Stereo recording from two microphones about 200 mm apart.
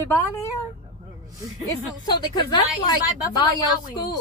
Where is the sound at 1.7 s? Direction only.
20° left (ahead or behind).